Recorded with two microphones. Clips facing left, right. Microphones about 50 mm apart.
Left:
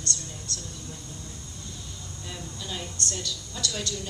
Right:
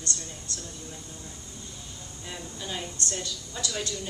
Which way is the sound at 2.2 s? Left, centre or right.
Centre.